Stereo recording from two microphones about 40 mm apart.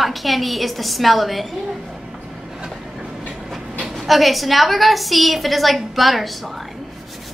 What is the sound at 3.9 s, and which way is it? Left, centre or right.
A woman's voice, centre.